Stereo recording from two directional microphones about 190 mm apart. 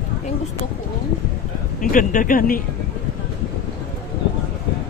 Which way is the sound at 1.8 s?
45° left (ahead or behind).